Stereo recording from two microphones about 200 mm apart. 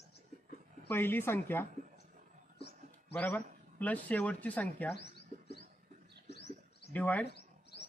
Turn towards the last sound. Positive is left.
turn(degrees=55)  # may be behind; listen again after turning